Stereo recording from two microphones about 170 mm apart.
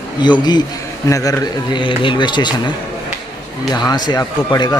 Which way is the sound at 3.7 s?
25° left (ahead or behind).